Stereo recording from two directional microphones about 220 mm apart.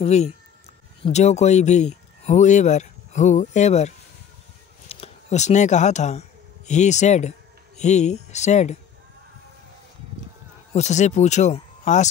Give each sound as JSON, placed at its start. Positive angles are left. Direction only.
{"t": 0.0, "sound": "speech", "side_deg": 30}
{"t": 10.7, "sound": "speech", "side_deg": 30}